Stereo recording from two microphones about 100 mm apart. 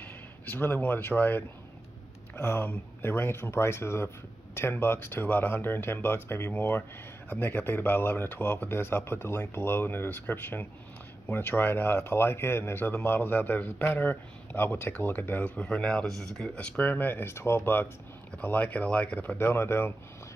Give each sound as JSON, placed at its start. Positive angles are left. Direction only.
{"t": 0.0, "sound": "speech", "side_deg": 20}